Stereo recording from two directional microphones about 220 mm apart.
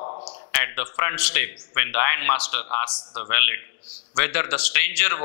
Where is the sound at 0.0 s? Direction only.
30° left (ahead or behind).